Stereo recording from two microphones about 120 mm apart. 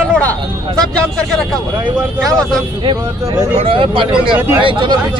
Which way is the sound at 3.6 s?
45° right (ahead or behind).